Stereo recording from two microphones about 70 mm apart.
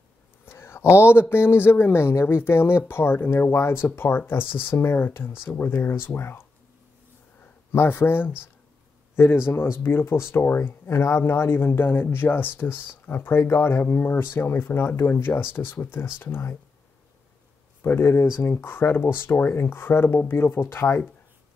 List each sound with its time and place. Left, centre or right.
0.5 s a sound: left
1.3 s speech: left
7.7 s a man's voice: left
13.4 s speech: left
17.8 s speech: left